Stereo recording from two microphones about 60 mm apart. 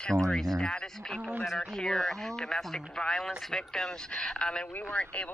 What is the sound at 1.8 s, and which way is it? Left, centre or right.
Speech, centre.